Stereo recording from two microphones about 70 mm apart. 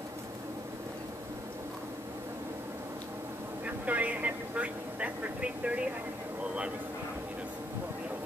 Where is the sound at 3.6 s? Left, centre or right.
Right.